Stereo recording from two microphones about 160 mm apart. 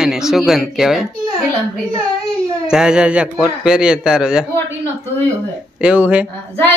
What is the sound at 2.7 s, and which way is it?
A child's voice, 5° right (ahead or behind).